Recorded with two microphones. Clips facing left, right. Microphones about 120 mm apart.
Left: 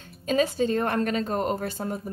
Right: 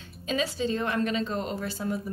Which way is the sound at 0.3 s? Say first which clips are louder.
Left 5 dB; 50° left (ahead or behind).